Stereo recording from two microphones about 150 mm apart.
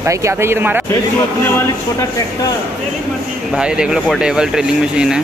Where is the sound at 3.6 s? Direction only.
5° right (ahead or behind).